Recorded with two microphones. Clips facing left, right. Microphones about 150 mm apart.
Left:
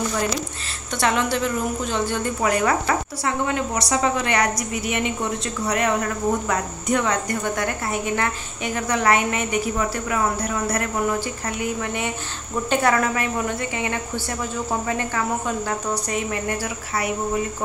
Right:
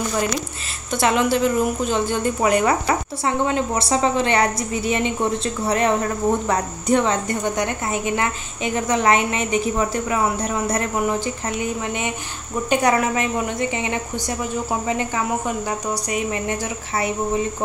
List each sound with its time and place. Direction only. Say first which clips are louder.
0.9 s speech: right 3 dB; 15° right (ahead or behind)